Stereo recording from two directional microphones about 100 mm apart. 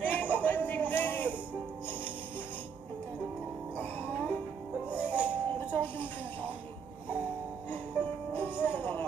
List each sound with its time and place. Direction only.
0.0 s a sound: 15° left (ahead or behind)
4.8 s music: 15° right (ahead or behind)
5.3 s music: 20° left (ahead or behind)
7.7 s music: 15° left (ahead or behind)